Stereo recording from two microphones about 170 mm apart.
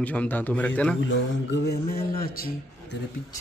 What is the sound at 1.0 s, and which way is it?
Speech, 85° left.